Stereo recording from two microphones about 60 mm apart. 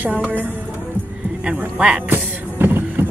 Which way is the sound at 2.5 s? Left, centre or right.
Right.